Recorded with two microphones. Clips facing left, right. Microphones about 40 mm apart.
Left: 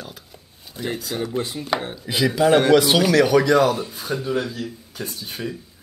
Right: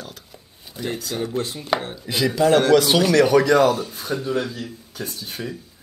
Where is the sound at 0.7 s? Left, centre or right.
Centre.